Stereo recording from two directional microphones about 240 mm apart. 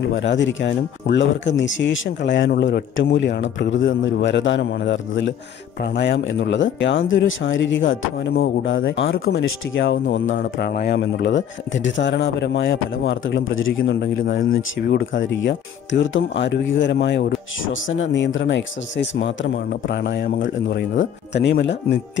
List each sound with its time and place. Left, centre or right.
0.1 s speech: left
10.3 s speech: left
21.3 s speech: left